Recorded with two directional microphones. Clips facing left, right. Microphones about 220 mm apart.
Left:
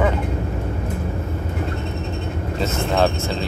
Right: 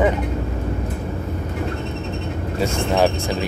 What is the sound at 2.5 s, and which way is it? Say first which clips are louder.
Speech: right 1 dB; 10° right (ahead or behind).